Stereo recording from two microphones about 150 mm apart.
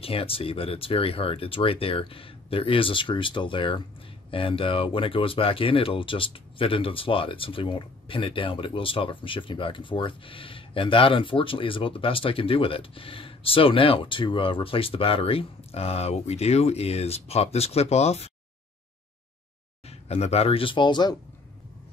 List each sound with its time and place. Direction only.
0.0 s speech: 40° left (ahead or behind)
19.9 s speech: 45° left (ahead or behind); by 21.2 s 30° left (ahead or behind)